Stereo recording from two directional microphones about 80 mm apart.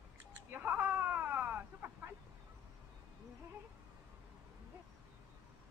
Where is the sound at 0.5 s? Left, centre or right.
Right.